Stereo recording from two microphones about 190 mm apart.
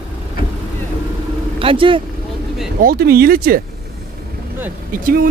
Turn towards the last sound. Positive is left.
turn(degrees=-50)  # may be behind; listen again after turning